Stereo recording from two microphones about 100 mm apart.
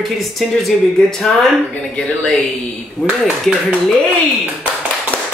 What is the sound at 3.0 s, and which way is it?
Speech, 15° left (ahead or behind).